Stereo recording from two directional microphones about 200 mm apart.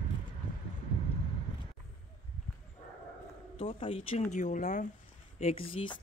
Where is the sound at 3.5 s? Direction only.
25° left (ahead or behind).